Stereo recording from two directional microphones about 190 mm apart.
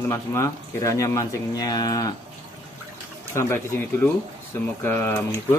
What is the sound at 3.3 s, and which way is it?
Speech, 10° left (ahead or behind).